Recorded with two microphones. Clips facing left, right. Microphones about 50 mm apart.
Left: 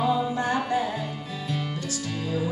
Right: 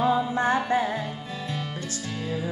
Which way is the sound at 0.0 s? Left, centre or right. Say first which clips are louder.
Right 2 dB; right.